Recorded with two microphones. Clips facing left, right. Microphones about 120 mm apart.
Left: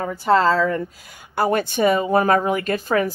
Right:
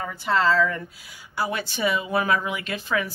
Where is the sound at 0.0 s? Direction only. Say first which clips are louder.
Left 6 dB; 45° left (ahead or behind).